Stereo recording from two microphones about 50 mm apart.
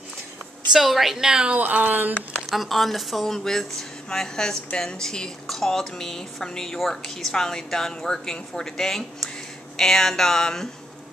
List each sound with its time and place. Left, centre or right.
0.7 s a woman's voice: centre
1.5 s speech: right
2.5 s a woman's voice: centre